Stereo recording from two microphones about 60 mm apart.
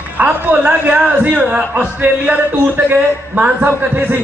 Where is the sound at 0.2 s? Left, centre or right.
Right.